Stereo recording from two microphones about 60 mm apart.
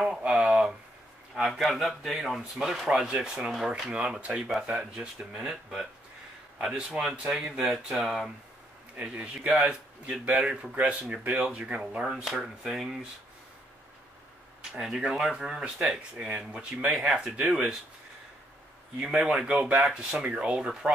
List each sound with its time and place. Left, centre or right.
0.2 s a sound: centre
1.3 s speech: centre
3.9 s speech: right; by 8.3 s centre
8.9 s speech: right
9.6 s speech: centre
12.2 s speech: centre
14.7 s speech: centre
18.9 s speech: centre